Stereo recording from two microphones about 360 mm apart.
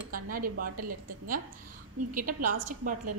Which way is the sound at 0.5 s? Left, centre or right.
Right.